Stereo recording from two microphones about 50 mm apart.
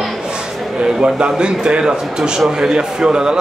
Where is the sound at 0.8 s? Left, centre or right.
Centre.